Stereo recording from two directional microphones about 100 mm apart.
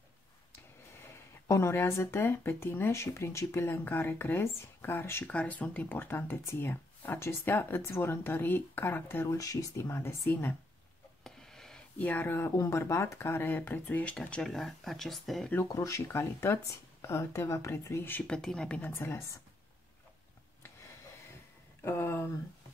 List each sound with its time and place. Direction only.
1.5 s speech: 25° left (ahead or behind)
9.4 s speech: 35° left (ahead or behind)
11.2 s a sound: 5° left (ahead or behind)
12.0 s speech: 15° left (ahead or behind)
15.7 s speech: 35° left (ahead or behind)
18.2 s speech: 5° left (ahead or behind)
18.9 s speech: 25° left (ahead or behind)
21.8 s speech: 25° left (ahead or behind)